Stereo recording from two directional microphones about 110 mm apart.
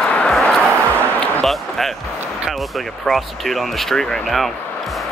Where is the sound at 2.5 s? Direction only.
Centre (ahead or behind).